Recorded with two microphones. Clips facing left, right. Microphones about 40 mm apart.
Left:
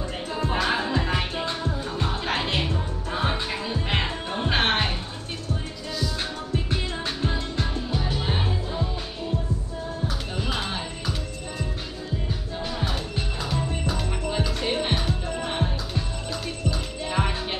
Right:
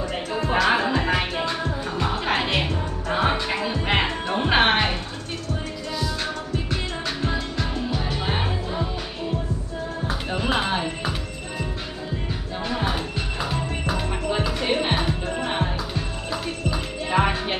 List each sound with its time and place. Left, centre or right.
0.7 s music: right
2.2 s music: centre
2.5 s music: right
8.2 s music: right
10.0 s music: right
12.7 s music: right